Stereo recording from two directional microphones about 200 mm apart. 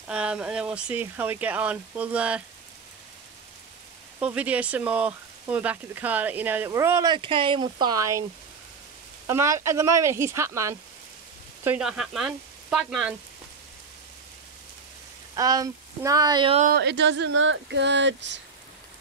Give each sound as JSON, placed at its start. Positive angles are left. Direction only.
{"t": 0.1, "sound": "speech", "side_deg": -5}
{"t": 4.2, "sound": "speech", "side_deg": -5}
{"t": 9.3, "sound": "speech", "side_deg": -15}
{"t": 15.3, "sound": "speech", "side_deg": -20}
{"t": 16.6, "sound": "speech", "side_deg": -55}